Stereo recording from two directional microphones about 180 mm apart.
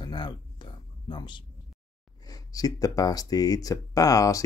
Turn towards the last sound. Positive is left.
turn(degrees=20)  # may be behind; listen again after turning